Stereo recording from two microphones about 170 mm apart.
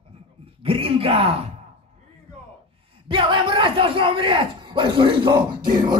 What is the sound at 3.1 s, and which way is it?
Speech, 30° right (ahead or behind).